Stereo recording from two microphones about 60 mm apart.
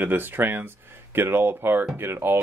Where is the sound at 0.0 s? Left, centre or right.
Right.